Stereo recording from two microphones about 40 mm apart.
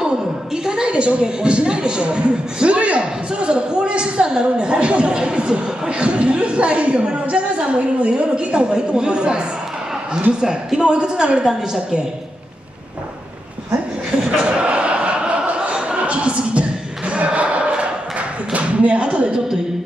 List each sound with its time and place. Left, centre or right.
0.7 s a man's voice: right
10.4 s a man's voice: centre
14.2 s a sound: right